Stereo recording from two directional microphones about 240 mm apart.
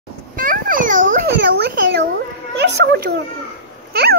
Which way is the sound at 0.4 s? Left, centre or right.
Right.